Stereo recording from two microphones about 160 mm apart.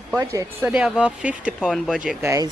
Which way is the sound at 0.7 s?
5° right (ahead or behind).